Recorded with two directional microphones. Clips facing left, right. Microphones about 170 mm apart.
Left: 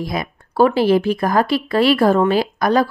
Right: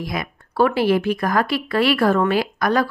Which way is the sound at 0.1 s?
30° left (ahead or behind).